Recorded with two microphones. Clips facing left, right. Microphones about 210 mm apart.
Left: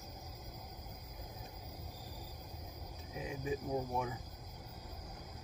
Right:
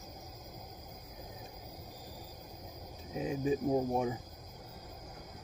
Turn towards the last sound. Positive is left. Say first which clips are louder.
# right 7 dB
turn(degrees=-35)  # may be behind; listen again after turning